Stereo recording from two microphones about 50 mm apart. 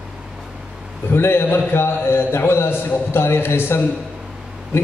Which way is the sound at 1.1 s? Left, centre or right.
Left.